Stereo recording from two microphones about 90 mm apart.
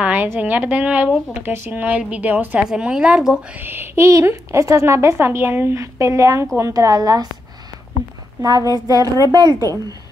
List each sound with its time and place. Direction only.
0.0 s speech: 20° right (ahead or behind)
2.6 s speech: 5° right (ahead or behind)
3.5 s a woman's voice: 25° right (ahead or behind); by 7.2 s 45° right (ahead or behind)
8.4 s a woman's voice: 45° right (ahead or behind)
9.5 s a woman's voice: 35° left (ahead or behind)